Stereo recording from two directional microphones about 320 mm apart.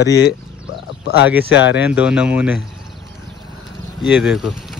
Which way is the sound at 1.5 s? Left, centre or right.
Left.